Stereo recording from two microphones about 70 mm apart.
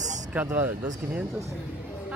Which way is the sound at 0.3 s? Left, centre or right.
Right.